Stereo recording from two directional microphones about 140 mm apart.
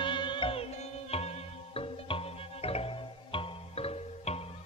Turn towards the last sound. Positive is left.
turn(degrees=45)  # may be behind; listen again after turning